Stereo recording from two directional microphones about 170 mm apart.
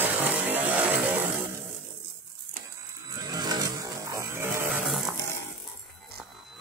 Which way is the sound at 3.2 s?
20° right (ahead or behind).